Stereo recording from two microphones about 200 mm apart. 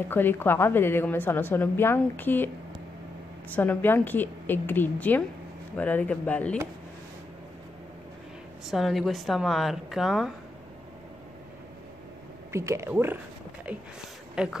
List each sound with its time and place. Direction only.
0.1 s a woman's voice: 10° left (ahead or behind)
8.6 s a woman's voice: centre (ahead or behind)
12.5 s speech: 15° right (ahead or behind)